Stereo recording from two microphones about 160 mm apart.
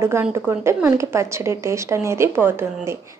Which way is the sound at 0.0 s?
15° right (ahead or behind).